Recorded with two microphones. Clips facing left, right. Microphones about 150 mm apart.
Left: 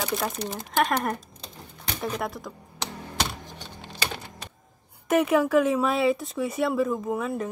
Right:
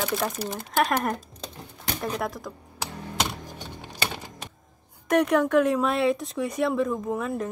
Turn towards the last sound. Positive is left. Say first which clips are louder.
# even
turn(degrees=0)  # may be behind; listen again after turning